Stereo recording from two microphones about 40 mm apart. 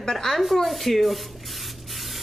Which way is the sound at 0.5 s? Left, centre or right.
Centre.